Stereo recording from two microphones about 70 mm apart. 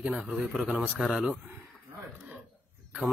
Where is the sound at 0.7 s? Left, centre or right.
Centre.